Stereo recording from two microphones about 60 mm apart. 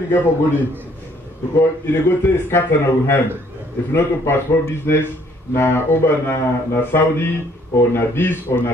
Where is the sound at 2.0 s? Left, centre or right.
Left.